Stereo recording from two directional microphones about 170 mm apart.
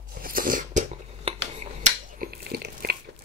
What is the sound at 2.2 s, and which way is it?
Biting, 70° right (ahead or behind).